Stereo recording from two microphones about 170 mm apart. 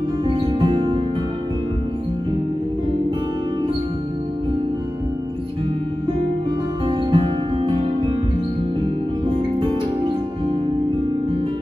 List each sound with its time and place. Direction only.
0.3 s music: 30° right (ahead or behind)
7.1 s music: 30° right (ahead or behind)